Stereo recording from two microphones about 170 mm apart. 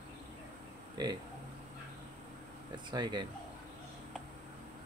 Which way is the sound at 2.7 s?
25° right (ahead or behind).